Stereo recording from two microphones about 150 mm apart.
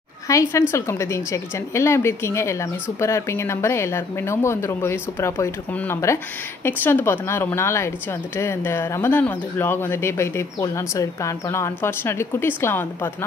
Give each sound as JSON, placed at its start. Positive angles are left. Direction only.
{"t": 0.3, "sound": "a woman's voice", "side_deg": 20}